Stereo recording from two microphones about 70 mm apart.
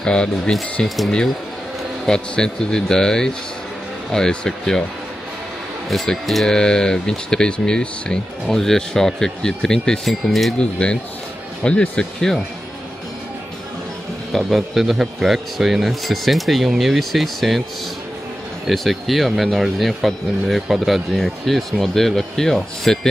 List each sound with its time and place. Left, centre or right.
0.0 s speech: centre
0.8 s a man's voice: centre
5.9 s speech: centre
10.6 s speech: centre
14.3 s a man's voice: centre
18.7 s a man's voice: centre